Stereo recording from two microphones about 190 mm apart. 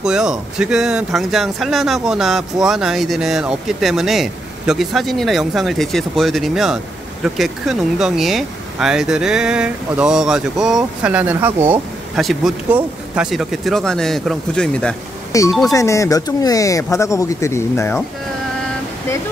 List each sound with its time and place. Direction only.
0.0 s speech: 5° right (ahead or behind)
15.3 s speech: 15° left (ahead or behind)